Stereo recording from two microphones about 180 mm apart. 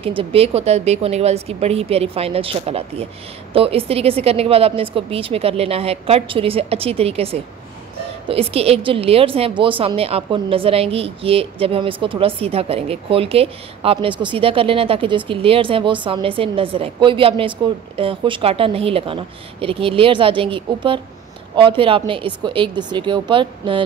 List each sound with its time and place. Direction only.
0.0 s a woman's voice: 30° right (ahead or behind)